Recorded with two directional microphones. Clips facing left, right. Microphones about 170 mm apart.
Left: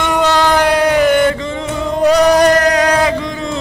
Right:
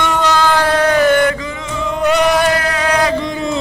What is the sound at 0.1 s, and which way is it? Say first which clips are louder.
Music: left 4 dB; 15° left (ahead or behind).